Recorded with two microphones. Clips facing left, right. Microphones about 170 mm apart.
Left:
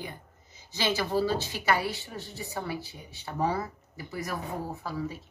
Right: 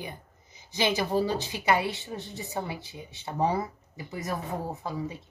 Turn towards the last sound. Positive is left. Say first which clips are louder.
# even
turn(degrees=-20)  # may be behind; listen again after turning